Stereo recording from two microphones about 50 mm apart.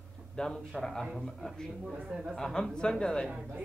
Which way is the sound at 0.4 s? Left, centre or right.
Centre.